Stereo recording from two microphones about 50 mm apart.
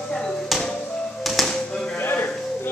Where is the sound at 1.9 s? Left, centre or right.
Left.